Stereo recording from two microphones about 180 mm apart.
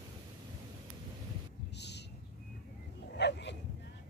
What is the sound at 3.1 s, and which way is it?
Bow-wow, 75° left (ahead or behind).